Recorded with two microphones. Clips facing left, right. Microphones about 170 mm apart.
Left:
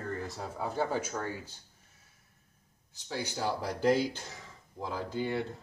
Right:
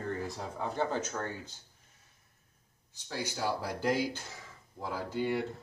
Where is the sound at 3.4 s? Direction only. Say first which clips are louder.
Left 1 dB; 15° left (ahead or behind).